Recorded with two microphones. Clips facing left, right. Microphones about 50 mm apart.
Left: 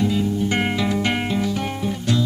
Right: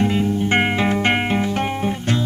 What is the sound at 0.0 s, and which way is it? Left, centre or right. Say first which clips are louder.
Music: right 2 dB; right.